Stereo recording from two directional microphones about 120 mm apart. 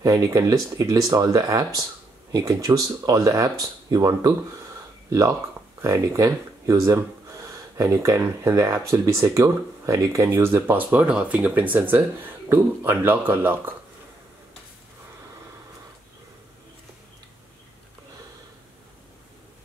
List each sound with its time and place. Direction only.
0.0 s speech: 30° right (ahead or behind)
5.8 s speech: 25° right (ahead or behind)